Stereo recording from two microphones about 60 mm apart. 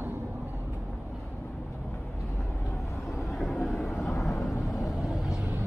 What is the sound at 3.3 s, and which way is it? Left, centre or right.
Vehicle, centre.